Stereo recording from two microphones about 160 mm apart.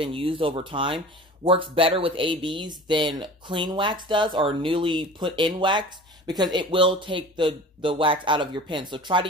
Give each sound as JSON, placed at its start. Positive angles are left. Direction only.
{"t": 0.0, "sound": "speech", "side_deg": -35}